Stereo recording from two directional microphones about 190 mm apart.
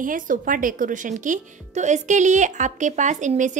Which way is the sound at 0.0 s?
45° right (ahead or behind).